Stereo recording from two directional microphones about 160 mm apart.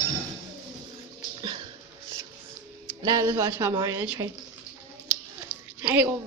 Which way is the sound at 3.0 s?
25° right (ahead or behind).